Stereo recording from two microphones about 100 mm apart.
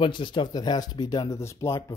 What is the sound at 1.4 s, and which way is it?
Speech, 25° left (ahead or behind).